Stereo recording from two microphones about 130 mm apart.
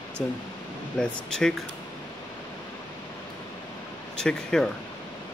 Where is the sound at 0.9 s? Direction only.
5° left (ahead or behind).